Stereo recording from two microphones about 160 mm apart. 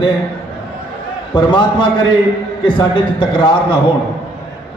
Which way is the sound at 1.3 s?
30° left (ahead or behind).